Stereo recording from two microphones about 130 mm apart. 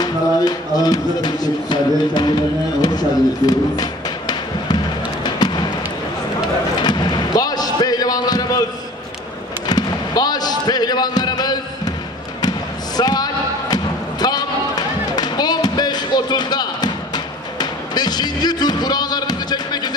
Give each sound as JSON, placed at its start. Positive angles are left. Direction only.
{"t": 0.0, "sound": "music", "side_deg": 30}
{"t": 6.8, "sound": "a sound", "side_deg": 35}
{"t": 9.7, "sound": "basketball bounce", "side_deg": 30}
{"t": 14.2, "sound": "music", "side_deg": 30}